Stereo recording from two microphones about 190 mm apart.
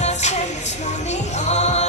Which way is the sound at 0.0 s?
35° left (ahead or behind).